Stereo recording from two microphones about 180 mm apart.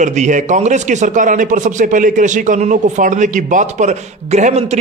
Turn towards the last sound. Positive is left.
turn(degrees=-40)  # may be behind; listen again after turning